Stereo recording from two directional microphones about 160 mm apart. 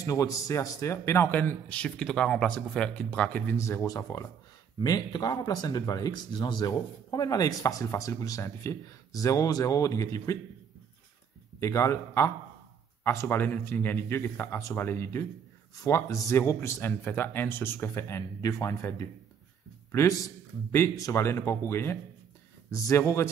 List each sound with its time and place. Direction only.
0.0 s a man's voice: 20° left (ahead or behind)
11.6 s a man's voice: 15° left (ahead or behind)